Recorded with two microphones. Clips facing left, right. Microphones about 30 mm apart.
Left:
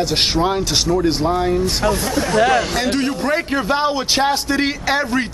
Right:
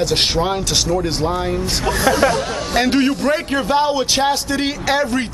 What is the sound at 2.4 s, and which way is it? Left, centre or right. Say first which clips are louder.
Speech: left 9 dB; left.